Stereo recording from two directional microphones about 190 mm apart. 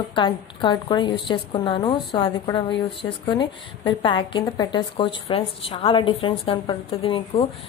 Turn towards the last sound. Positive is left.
turn(degrees=30)  # may be behind; listen again after turning